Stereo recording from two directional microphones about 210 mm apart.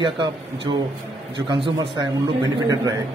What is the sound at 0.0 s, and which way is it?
Speech, 20° right (ahead or behind).